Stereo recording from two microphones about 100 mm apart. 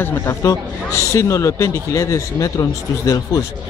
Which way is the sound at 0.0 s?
25° left (ahead or behind).